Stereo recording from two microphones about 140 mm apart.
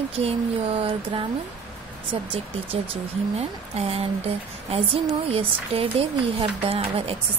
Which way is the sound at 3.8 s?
45° right (ahead or behind).